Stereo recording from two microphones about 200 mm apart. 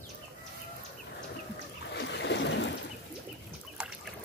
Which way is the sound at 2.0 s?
60° left (ahead or behind).